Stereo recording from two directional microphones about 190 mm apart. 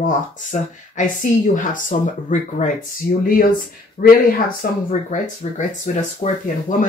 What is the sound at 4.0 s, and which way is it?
Speech, 40° left (ahead or behind).